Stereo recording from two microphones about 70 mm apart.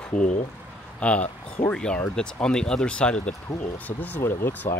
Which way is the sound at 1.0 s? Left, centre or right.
Centre.